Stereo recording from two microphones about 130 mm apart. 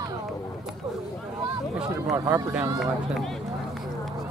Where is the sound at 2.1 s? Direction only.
25° right (ahead or behind).